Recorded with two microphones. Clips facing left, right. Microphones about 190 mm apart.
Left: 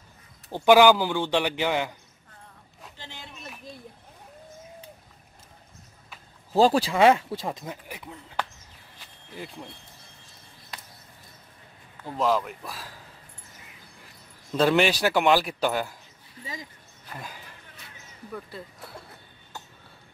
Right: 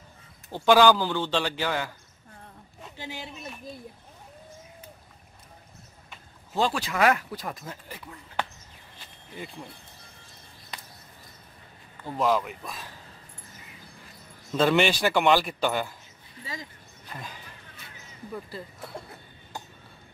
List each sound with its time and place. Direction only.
0.5 s a man's voice: 15° left (ahead or behind)
3.0 s a sound: 10° right (ahead or behind)
6.5 s speech: 35° left (ahead or behind); by 8.1 s 15° left (ahead or behind)
12.0 s a man's voice: centre (ahead or behind)
14.5 s a man's voice: centre (ahead or behind)
17.1 s a man's voice: 10° left (ahead or behind)